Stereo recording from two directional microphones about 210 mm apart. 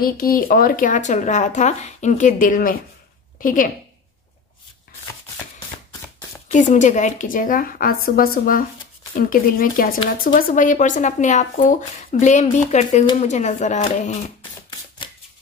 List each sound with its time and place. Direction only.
0.0 s a woman's voice: 45° left (ahead or behind)
6.5 s speech: 35° left (ahead or behind)